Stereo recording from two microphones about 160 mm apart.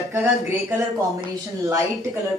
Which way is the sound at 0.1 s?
10° right (ahead or behind).